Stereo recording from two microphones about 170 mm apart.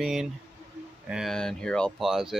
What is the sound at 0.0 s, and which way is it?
Speech, 5° right (ahead or behind).